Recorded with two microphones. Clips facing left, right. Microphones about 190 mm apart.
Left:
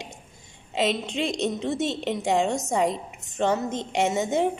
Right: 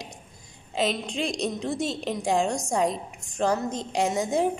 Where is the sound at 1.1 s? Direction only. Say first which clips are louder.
Left 2 dB; centre (ahead or behind).